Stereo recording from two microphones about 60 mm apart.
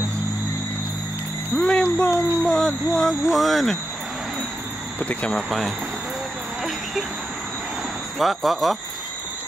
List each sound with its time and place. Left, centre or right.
1.5 s a sound: centre
2.0 s speech: centre
5.3 s speech: centre
8.2 s speech: centre